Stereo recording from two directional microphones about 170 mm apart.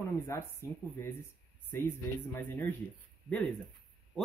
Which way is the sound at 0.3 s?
15° left (ahead or behind).